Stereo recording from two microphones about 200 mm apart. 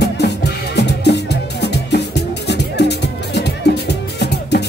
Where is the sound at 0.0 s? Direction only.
55° left (ahead or behind).